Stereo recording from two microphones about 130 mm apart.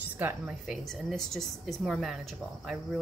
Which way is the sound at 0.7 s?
5° left (ahead or behind).